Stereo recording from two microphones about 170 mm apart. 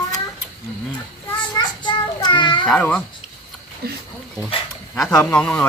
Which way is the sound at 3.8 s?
65° right (ahead or behind).